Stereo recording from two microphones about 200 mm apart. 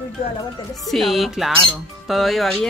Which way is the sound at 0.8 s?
Centre (ahead or behind).